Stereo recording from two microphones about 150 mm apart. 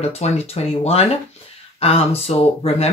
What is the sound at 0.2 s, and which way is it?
Speech, 45° left (ahead or behind).